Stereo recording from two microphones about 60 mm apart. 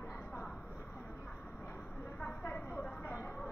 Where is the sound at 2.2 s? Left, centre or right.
Left.